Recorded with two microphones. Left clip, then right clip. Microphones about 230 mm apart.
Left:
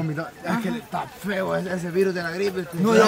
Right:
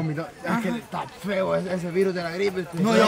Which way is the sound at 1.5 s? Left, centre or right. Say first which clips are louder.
Even; centre.